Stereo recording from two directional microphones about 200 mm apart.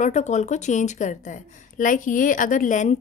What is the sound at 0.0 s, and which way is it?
A woman's voice, 35° left (ahead or behind).